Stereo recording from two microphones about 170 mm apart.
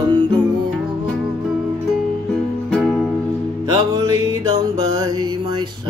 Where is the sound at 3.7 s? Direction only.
25° right (ahead or behind).